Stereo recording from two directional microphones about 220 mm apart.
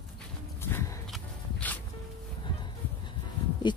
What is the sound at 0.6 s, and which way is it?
Horse, 10° left (ahead or behind).